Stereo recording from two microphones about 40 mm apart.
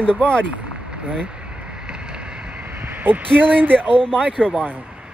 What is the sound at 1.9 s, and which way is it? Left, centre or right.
Vehicle, right.